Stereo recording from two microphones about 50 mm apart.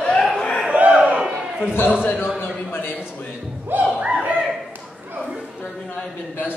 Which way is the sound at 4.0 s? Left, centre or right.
Right.